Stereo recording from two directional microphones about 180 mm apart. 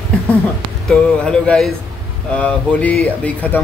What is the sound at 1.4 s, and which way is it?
Speech, 5° left (ahead or behind).